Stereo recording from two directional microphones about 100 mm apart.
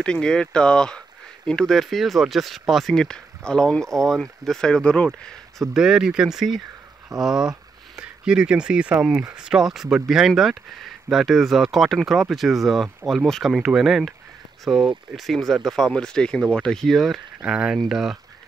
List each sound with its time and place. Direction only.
0.0 s speech: 10° left (ahead or behind)
5.8 s speech: 5° right (ahead or behind)